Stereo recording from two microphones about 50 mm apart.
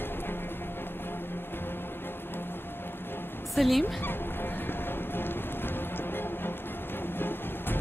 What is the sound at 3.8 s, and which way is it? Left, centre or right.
Music, left.